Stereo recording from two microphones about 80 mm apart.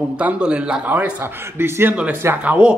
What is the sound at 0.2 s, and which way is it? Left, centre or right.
A man's voice, centre.